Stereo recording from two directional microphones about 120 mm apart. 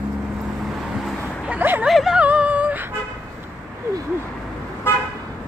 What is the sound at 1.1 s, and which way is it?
Vehicle, 10° left (ahead or behind).